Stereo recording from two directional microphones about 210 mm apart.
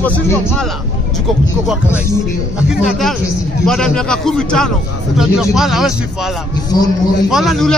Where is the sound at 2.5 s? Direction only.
5° right (ahead or behind).